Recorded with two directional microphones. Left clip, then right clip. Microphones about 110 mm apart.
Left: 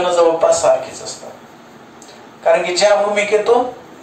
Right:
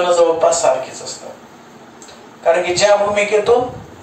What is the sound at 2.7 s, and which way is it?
Speech, 20° left (ahead or behind).